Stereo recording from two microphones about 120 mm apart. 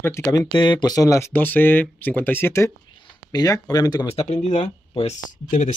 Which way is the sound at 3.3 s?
30° left (ahead or behind).